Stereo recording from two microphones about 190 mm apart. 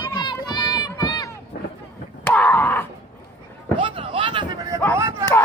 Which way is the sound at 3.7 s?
25° right (ahead or behind).